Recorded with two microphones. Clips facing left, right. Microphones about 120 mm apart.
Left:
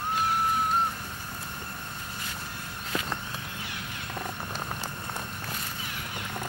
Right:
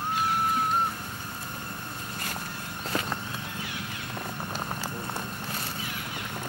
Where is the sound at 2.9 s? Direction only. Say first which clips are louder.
Right 2 dB; 35° right (ahead or behind).